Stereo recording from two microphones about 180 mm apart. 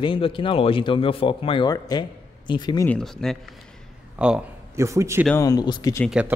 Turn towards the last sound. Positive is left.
turn(degrees=20)  # may be behind; listen again after turning